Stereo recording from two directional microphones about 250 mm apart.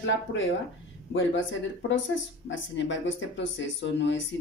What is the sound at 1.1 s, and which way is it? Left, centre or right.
Speech, left.